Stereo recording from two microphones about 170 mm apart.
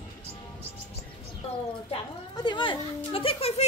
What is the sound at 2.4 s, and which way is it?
Speech, 25° left (ahead or behind).